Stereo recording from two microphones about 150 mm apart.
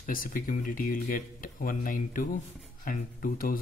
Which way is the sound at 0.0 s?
70° left (ahead or behind).